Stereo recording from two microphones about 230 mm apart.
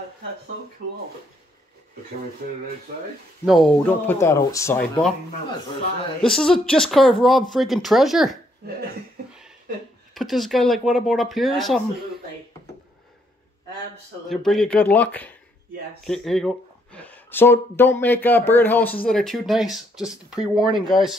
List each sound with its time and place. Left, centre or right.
3.4 s speech: centre
6.2 s speech: centre
10.1 s speech: centre
14.3 s speech: centre